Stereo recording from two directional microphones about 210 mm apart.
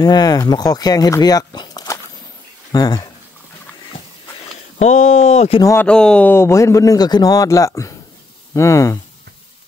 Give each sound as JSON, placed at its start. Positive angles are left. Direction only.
{"t": 0.0, "sound": "speech", "side_deg": 20}
{"t": 4.7, "sound": "speech", "side_deg": 35}
{"t": 5.6, "sound": "speech", "side_deg": 10}